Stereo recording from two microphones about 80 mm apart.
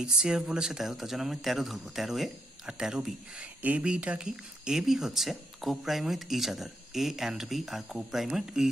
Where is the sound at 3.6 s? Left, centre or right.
Centre.